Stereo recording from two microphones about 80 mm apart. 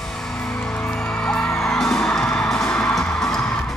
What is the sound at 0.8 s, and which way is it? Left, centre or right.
Music, centre.